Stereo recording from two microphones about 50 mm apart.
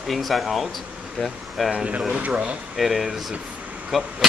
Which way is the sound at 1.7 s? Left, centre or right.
Right.